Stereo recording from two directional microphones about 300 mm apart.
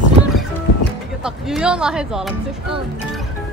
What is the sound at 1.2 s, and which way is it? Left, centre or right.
Speech, centre.